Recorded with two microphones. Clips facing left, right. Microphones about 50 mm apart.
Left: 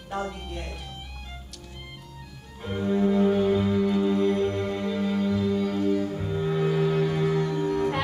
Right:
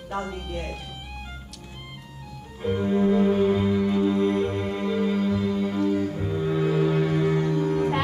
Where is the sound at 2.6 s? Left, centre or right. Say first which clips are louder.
Right 2 dB; centre.